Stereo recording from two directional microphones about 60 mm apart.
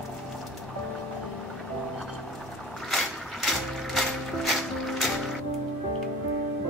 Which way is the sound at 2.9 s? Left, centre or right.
Centre.